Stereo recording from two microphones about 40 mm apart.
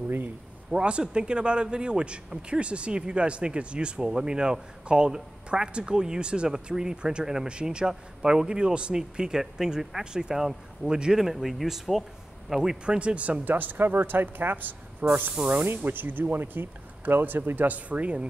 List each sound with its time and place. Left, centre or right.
0.7 s a man's voice: right; by 12.7 s centre
12.8 s speech: right
13.5 s speech: right